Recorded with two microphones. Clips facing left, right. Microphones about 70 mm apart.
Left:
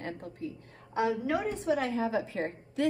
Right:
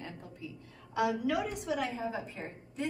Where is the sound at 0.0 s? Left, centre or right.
Left.